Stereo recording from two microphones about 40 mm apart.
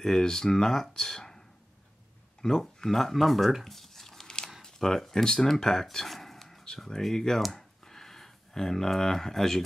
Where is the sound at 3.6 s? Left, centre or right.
Centre.